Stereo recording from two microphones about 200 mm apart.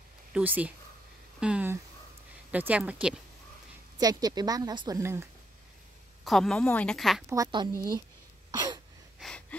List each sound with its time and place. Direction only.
0.3 s speech: 10° right (ahead or behind)
4.0 s a woman's voice: 20° right (ahead or behind)
6.2 s a woman's voice: centre (ahead or behind)
7.2 s a woman's voice: 20° right (ahead or behind)
8.5 s a sound: 20° right (ahead or behind)
9.2 s gasp: 5° left (ahead or behind)